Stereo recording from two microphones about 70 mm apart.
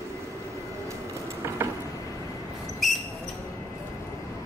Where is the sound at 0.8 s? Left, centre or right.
Right.